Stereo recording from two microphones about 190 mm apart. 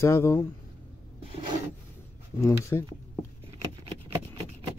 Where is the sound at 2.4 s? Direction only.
15° left (ahead or behind).